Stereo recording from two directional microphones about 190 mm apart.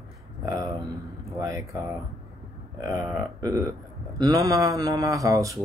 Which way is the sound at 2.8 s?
15° right (ahead or behind).